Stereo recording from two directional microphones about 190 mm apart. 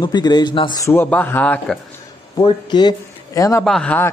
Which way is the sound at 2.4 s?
20° left (ahead or behind).